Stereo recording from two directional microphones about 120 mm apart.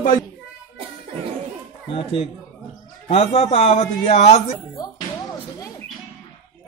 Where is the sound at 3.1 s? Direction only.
65° left (ahead or behind).